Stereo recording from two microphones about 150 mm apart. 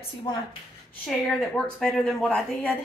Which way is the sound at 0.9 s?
5° left (ahead or behind).